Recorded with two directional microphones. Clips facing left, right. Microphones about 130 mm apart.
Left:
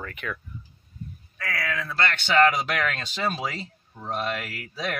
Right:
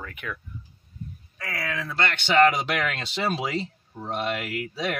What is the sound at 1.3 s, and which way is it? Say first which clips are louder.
Speech: left 1 dB; 20° right (ahead or behind).